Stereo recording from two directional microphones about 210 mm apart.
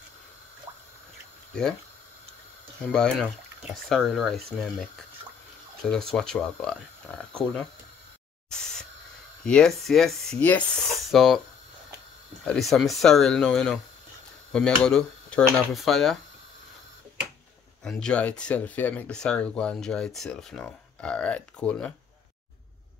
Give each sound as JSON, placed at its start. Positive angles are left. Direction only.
{"t": 1.5, "sound": "speech", "side_deg": 5}
{"t": 2.8, "sound": "speech", "side_deg": 5}
{"t": 5.8, "sound": "speech", "side_deg": 5}
{"t": 8.5, "sound": "spray", "side_deg": 5}
{"t": 9.4, "sound": "speech", "side_deg": 5}
{"t": 12.4, "sound": "speech", "side_deg": 0}
{"t": 17.8, "sound": "speech", "side_deg": 5}